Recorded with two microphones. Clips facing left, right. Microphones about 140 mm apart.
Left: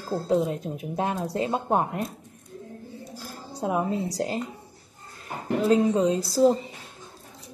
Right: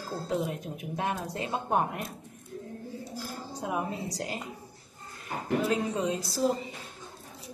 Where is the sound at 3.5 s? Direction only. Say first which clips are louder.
Left 7 dB; 30° left (ahead or behind).